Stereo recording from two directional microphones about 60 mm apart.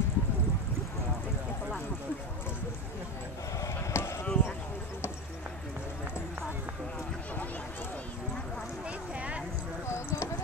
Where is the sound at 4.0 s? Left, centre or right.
Left.